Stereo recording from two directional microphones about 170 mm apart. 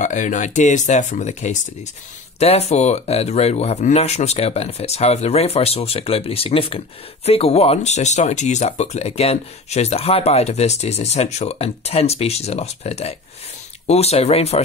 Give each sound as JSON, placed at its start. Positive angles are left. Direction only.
{"t": 0.0, "sound": "speech", "side_deg": 45}